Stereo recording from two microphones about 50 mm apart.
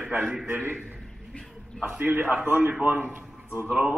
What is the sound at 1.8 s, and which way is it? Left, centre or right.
A man's voice, right.